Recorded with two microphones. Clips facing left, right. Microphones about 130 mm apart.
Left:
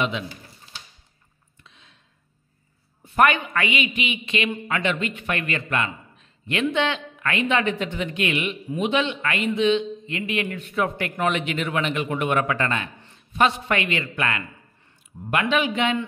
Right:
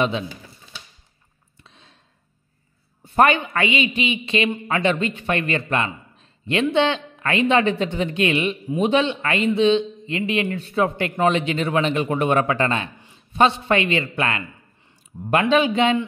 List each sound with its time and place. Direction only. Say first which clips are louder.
1.6 s a sound: right 3 dB; 35° right (ahead or behind)
3.0 s a man's voice: right 2 dB; 30° right (ahead or behind)
15.5 s a man's voice: right 5 dB; 30° right (ahead or behind)